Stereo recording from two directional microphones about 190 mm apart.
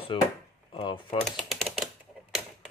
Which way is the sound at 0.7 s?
25° left (ahead or behind).